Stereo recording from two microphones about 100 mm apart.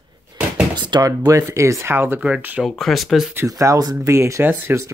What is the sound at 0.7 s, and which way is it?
Speech, 45° right (ahead or behind).